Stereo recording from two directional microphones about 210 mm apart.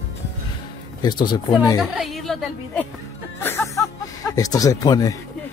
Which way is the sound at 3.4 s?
10° left (ahead or behind).